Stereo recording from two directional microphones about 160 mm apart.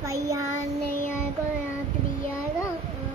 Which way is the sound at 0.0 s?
20° right (ahead or behind).